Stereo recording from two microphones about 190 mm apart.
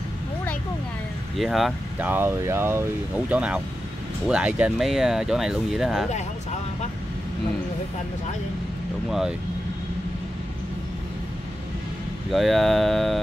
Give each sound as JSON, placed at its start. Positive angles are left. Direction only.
{"t": 1.4, "sound": "speech", "side_deg": 0}
{"t": 12.3, "sound": "speech", "side_deg": 0}